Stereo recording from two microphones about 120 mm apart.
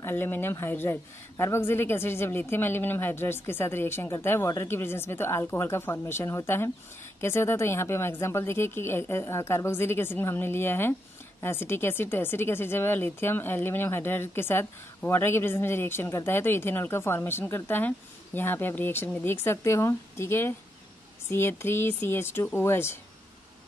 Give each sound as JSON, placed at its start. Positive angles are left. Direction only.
{"t": 0.0, "sound": "a woman's voice", "side_deg": 20}